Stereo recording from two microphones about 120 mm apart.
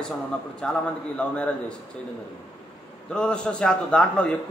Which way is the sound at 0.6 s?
10° left (ahead or behind).